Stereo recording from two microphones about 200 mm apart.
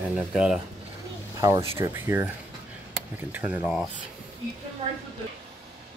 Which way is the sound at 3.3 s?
5° right (ahead or behind).